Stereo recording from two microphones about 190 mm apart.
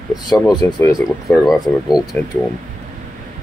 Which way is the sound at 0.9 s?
Centre (ahead or behind).